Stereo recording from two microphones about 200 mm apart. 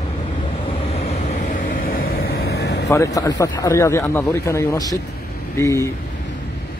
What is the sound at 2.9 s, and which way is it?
A man's voice, 15° left (ahead or behind).